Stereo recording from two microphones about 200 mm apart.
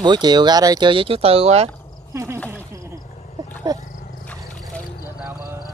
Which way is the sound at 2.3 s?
5° left (ahead or behind).